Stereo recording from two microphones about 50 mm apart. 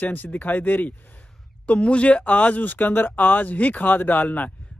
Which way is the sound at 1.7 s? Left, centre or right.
Left.